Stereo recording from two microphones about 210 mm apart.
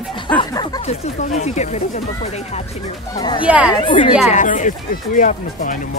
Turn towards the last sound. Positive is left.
turn(degrees=40)  # may be behind; listen again after turning